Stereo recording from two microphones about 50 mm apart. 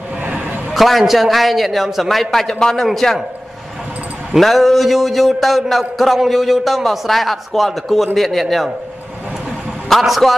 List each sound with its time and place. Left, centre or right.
0.2 s a sound: right
0.7 s a man's voice: centre
4.4 s a man's voice: centre
9.8 s a man's voice: centre